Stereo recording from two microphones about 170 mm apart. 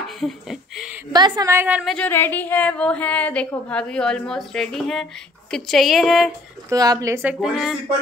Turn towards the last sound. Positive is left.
turn(degrees=0)  # may be behind; listen again after turning